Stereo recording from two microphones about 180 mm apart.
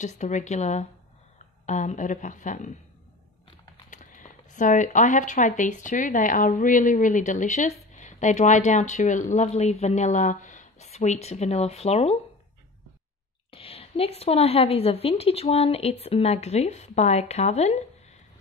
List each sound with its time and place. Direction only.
0.0 s a woman's voice: 40° left (ahead or behind)
3.9 s speech: 50° left (ahead or behind)
13.5 s a woman's voice: 30° left (ahead or behind)